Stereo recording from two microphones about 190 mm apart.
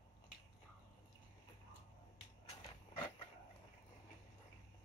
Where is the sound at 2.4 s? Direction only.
25° left (ahead or behind).